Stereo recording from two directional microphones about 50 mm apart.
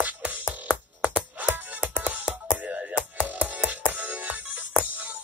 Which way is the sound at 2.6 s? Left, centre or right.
Right.